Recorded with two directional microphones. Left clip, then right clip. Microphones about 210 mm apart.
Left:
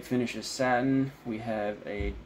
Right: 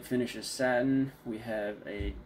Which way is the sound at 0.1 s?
25° left (ahead or behind).